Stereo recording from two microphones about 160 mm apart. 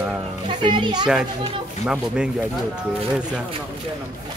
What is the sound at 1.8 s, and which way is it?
Speech, 5° right (ahead or behind).